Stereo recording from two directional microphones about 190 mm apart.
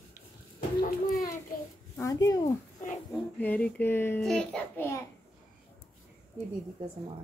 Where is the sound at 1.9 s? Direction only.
15° left (ahead or behind).